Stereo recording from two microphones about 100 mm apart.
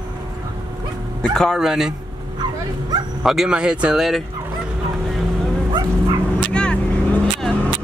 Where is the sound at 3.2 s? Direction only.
5° right (ahead or behind).